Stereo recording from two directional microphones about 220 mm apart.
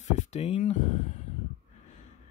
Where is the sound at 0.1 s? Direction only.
30° left (ahead or behind).